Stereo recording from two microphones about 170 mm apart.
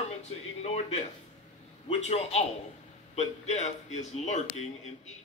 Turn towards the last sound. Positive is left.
turn(degrees=45)  # may be behind; listen again after turning